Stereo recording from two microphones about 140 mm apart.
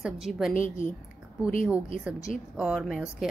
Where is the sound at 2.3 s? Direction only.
5° left (ahead or behind).